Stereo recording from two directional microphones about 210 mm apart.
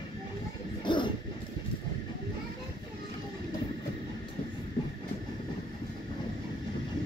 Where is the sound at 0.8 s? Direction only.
20° left (ahead or behind).